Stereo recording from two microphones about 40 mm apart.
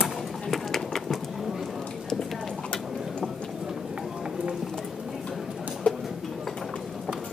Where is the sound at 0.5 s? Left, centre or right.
Centre.